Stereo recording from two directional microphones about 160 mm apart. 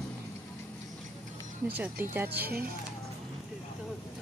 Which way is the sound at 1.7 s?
10° right (ahead or behind).